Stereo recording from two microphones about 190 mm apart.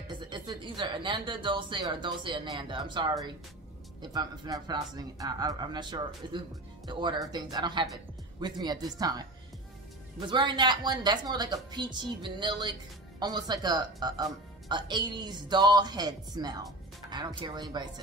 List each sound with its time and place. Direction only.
0.1 s speech: 25° right (ahead or behind)
10.2 s speech: 25° right (ahead or behind)